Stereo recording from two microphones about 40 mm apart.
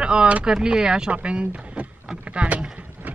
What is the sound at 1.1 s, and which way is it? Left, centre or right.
Speech, right.